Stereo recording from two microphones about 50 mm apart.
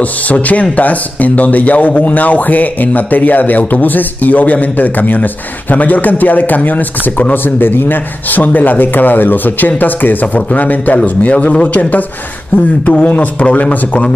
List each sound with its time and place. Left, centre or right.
0.0 s a man's voice: left